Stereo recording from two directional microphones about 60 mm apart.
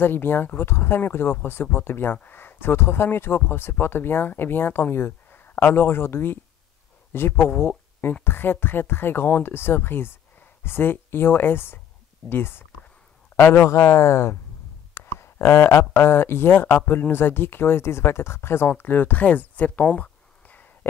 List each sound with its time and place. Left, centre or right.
0.0 s speech: left
13.7 s speech: left